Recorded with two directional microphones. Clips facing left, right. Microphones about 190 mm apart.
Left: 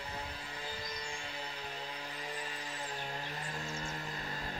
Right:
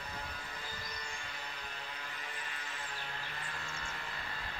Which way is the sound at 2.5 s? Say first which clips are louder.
Left 4 dB; 35° left (ahead or behind).